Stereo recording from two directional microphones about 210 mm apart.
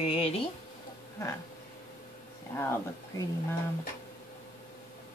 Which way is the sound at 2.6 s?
10° left (ahead or behind).